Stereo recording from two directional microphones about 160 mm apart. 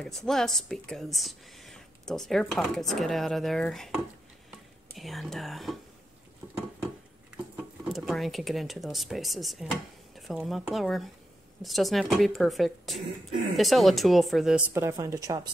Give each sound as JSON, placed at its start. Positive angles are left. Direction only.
{"t": 0.0, "sound": "speech", "side_deg": 5}
{"t": 7.5, "sound": "speech", "side_deg": 0}
{"t": 14.7, "sound": "speech", "side_deg": -15}